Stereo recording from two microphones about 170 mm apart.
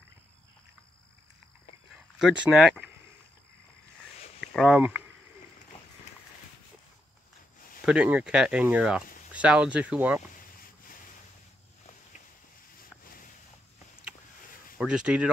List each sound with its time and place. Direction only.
2.1 s speech: 5° right (ahead or behind)
4.4 s a sound: centre (ahead or behind)
7.8 s speech: 5° right (ahead or behind)
14.8 s speech: 5° right (ahead or behind)